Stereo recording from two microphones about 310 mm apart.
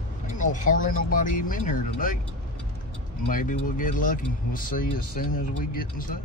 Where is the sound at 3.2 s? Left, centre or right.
Left.